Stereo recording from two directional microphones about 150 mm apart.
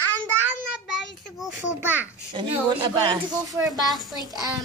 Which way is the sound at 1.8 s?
10° right (ahead or behind).